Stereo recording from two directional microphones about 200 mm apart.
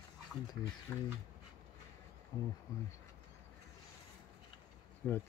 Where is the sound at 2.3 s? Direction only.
25° left (ahead or behind).